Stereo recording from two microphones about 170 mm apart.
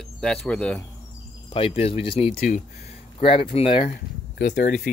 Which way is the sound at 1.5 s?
35° left (ahead or behind).